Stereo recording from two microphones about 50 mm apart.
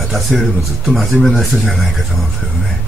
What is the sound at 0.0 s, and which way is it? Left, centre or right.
Speech, centre.